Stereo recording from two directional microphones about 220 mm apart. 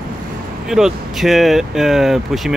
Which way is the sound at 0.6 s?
Centre (ahead or behind).